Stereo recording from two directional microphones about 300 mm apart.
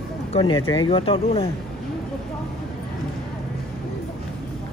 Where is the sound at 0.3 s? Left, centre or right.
Centre.